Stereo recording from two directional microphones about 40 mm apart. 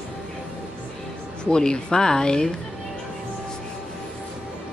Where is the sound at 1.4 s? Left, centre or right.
Centre.